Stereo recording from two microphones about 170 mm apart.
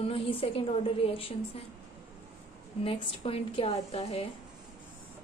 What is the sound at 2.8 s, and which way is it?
A woman's voice, 35° left (ahead or behind).